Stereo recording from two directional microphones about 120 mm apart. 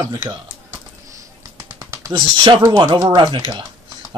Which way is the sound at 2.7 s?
35° right (ahead or behind).